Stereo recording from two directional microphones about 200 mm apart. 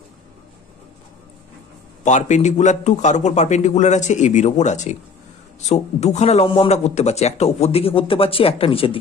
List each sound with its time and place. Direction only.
2.0 s a man's voice: 35° left (ahead or behind)